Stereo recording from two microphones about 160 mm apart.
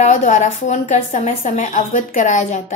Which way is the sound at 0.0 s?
50° left (ahead or behind).